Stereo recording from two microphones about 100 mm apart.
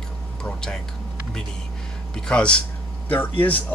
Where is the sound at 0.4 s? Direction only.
5° left (ahead or behind).